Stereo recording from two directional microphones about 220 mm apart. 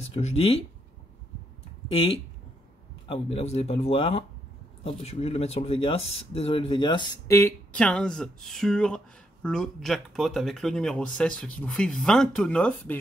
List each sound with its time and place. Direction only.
0.1 s speech: 25° left (ahead or behind)
1.9 s speech: 25° left (ahead or behind); by 13.0 s 5° left (ahead or behind)